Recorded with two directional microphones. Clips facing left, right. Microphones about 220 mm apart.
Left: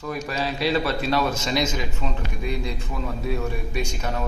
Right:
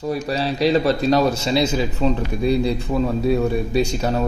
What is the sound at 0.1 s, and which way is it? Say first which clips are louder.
A man's voice: right 4 dB; 35° right (ahead or behind).